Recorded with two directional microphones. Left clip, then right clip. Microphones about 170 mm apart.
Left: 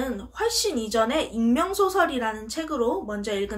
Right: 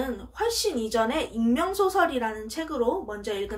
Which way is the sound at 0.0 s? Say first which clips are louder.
Left 1 dB; 25° left (ahead or behind).